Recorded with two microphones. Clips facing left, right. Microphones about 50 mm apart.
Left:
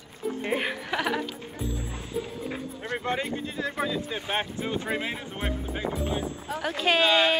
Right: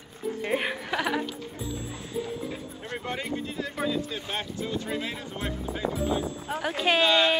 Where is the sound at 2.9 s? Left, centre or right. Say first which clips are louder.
Left 4 dB; left.